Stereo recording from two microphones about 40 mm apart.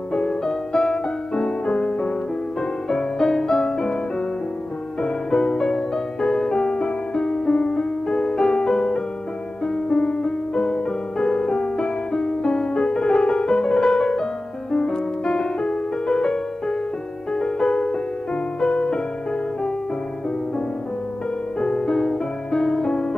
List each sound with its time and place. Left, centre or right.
0.1 s music: centre
5.0 s music: centre
21.5 s music: left